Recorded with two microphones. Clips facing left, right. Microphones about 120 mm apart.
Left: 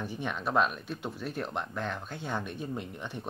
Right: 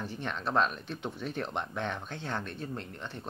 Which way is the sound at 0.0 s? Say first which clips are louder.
Left 1 dB; 10° left (ahead or behind).